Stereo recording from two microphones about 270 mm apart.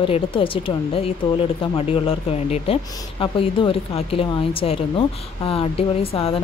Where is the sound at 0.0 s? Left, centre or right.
Centre.